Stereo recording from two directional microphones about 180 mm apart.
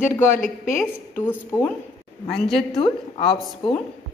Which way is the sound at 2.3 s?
Centre (ahead or behind).